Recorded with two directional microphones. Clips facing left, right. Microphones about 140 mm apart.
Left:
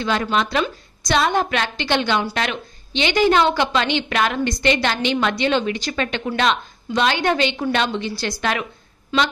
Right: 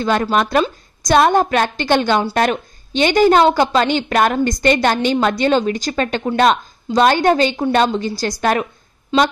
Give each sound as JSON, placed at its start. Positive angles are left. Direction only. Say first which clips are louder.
{"t": 0.0, "sound": "a woman's voice", "louder": "right 4 dB", "side_deg": -45}
{"t": 9.1, "sound": "speech", "louder": "right 5 dB", "side_deg": -25}